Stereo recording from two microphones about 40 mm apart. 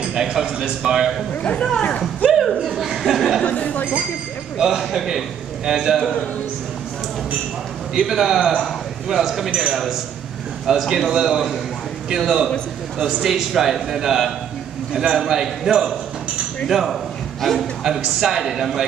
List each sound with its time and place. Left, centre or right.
0.0 s a man's voice: centre
1.6 s speech: left
2.3 s speech: centre
3.4 s speech: left
4.6 s a man's voice: centre
7.9 s a man's voice: centre
13.0 s a man's voice: centre
17.8 s a man's voice: centre